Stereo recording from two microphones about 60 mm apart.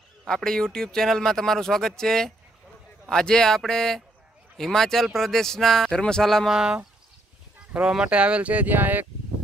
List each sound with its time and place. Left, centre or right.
0.3 s speech: centre
6.5 s speech: centre; by 9.0 s right